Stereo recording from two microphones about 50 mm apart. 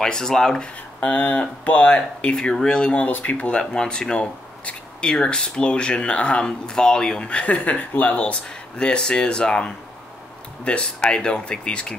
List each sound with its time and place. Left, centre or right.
0.0 s speech: centre
3.1 s speech: left